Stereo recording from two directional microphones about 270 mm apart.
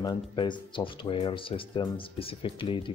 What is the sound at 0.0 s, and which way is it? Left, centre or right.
Speech, centre.